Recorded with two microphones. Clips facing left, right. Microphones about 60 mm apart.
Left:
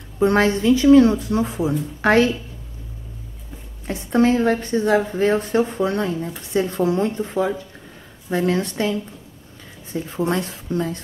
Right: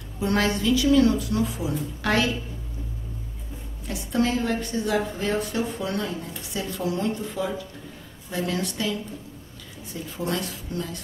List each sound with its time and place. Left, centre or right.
0.2 s a woman's voice: left
3.8 s a woman's voice: left
9.9 s a woman's voice: left